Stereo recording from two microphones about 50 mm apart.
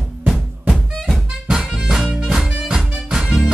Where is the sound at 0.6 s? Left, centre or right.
Centre.